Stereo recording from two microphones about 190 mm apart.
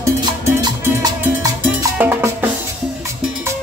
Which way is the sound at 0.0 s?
20° right (ahead or behind).